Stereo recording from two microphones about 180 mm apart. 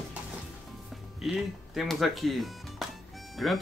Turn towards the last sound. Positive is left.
turn(degrees=0)  # may be behind; listen again after turning